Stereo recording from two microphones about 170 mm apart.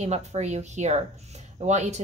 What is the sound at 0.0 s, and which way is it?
Speech, 40° right (ahead or behind).